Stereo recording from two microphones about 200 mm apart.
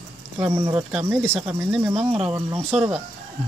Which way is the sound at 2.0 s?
30° right (ahead or behind).